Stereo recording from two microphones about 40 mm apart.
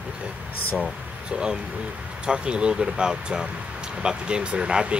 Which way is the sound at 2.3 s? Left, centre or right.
Right.